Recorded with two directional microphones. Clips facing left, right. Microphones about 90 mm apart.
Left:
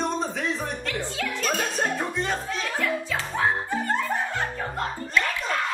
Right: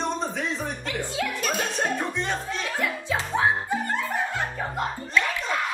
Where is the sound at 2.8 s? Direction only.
20° right (ahead or behind).